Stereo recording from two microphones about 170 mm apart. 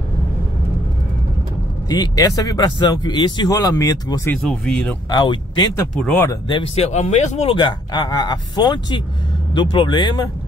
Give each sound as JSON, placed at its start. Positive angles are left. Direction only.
{"t": 1.9, "sound": "speech", "side_deg": 20}
{"t": 4.4, "sound": "speech", "side_deg": 5}
{"t": 5.1, "sound": "speech", "side_deg": 25}
{"t": 5.9, "sound": "speech", "side_deg": 5}
{"t": 6.5, "sound": "speech", "side_deg": 35}
{"t": 7.5, "sound": "speech", "side_deg": 25}